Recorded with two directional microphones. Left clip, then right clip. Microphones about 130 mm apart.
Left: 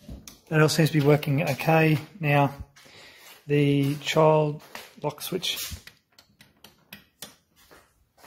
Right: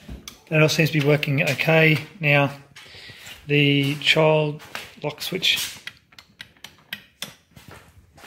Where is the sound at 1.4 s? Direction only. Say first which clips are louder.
Right 5 dB; 10° left (ahead or behind).